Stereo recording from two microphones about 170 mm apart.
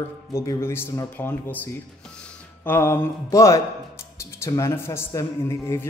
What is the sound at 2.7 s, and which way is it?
A man's voice, 15° left (ahead or behind).